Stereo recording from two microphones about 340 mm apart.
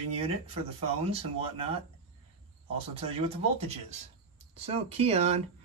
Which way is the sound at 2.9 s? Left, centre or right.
Centre.